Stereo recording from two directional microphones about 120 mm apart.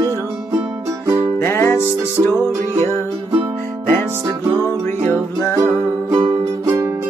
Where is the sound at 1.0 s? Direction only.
25° right (ahead or behind).